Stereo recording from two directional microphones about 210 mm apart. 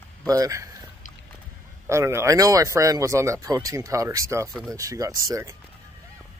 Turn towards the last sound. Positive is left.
turn(degrees=-15)  # may be behind; listen again after turning